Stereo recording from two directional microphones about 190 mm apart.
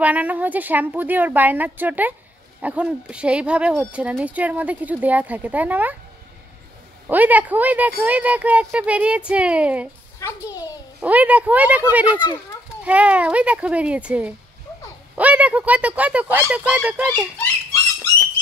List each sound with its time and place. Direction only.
0.0 s speech: 10° right (ahead or behind)
7.1 s speech: 10° right (ahead or behind)
10.2 s a child's voice: 15° left (ahead or behind)
11.0 s speech: 10° right (ahead or behind)